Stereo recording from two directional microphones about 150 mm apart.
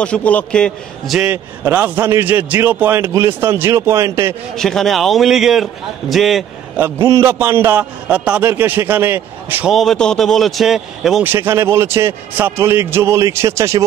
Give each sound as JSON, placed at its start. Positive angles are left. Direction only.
{"t": 0.0, "sound": "a man's voice", "side_deg": 10}
{"t": 1.3, "sound": "a man's voice", "side_deg": -15}
{"t": 4.6, "sound": "a man's voice", "side_deg": 0}
{"t": 6.8, "sound": "a man's voice", "side_deg": -15}
{"t": 9.7, "sound": "a man's voice", "side_deg": 0}
{"t": 11.2, "sound": "a man's voice", "side_deg": -15}